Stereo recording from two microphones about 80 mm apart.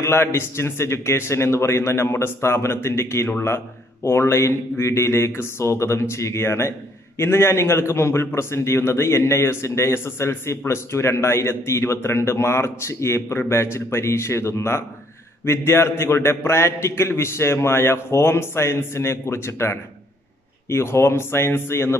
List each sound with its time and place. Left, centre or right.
0.0 s speech: left